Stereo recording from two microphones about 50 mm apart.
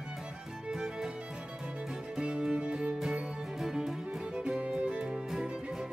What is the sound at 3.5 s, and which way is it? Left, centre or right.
Music, centre.